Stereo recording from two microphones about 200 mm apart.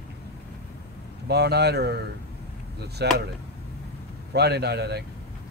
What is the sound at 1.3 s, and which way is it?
Speech, 55° right (ahead or behind).